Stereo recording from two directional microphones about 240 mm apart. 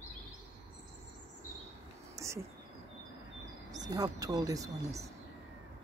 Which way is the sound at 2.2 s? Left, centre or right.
Centre.